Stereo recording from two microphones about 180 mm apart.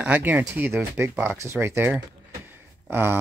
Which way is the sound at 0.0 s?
10° right (ahead or behind).